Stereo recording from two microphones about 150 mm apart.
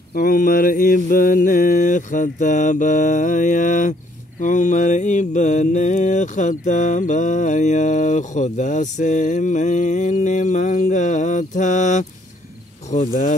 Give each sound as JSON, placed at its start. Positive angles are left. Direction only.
{"t": 0.1, "sound": "mantra", "side_deg": 75}